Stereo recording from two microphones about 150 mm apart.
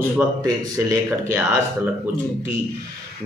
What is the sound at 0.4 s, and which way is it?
Speech, 20° right (ahead or behind).